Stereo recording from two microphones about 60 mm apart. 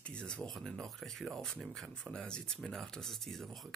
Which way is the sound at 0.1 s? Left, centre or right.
Centre.